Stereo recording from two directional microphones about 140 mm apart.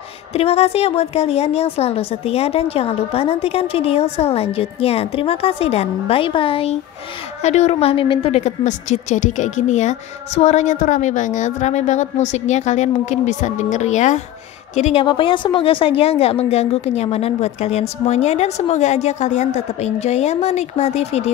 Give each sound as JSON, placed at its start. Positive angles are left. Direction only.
{"t": 0.3, "sound": "a woman's voice", "side_deg": 45}
{"t": 7.4, "sound": "a woman's voice", "side_deg": 55}
{"t": 15.0, "sound": "a woman's voice", "side_deg": 35}